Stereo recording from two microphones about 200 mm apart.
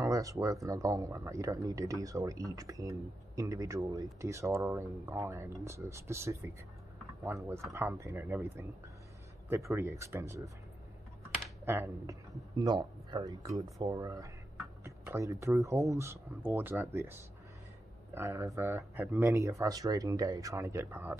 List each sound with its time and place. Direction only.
0.0 s speech: 15° right (ahead or behind)
11.6 s speech: 10° right (ahead or behind)
14.8 s a sound: 15° right (ahead or behind)
15.4 s speech: 15° right (ahead or behind)